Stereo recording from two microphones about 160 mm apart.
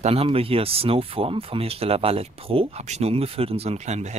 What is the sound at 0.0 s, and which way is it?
Speech, 35° right (ahead or behind).